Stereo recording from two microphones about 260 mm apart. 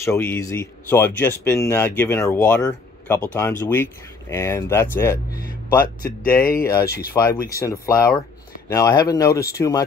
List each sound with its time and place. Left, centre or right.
0.0 s speech: centre
5.1 s speech: left
6.6 s speech: centre
6.9 s speech: left
7.5 s speech: centre